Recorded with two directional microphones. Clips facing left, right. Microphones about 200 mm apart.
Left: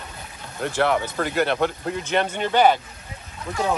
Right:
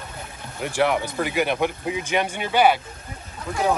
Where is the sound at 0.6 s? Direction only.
10° right (ahead or behind).